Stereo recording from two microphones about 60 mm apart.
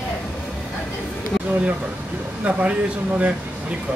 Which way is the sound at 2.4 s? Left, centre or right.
Centre.